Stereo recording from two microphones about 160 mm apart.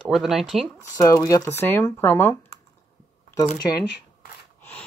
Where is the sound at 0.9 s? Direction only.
20° left (ahead or behind).